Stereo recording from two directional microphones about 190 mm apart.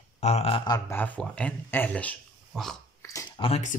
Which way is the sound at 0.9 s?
10° left (ahead or behind).